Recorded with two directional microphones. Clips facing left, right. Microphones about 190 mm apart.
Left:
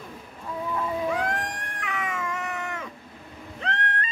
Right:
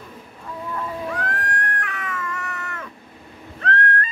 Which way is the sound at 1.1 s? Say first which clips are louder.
Left 1 dB; 15° left (ahead or behind).